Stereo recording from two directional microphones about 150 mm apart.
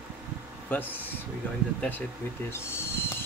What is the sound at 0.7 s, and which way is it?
Speech, 10° left (ahead or behind).